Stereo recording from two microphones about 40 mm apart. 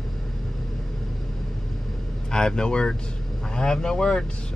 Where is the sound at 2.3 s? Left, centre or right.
Centre.